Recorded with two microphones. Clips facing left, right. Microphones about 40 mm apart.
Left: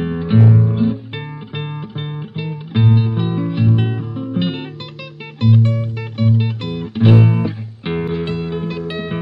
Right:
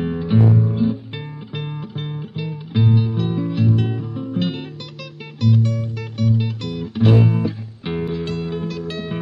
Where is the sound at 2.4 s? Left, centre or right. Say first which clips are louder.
Left 2 dB; left.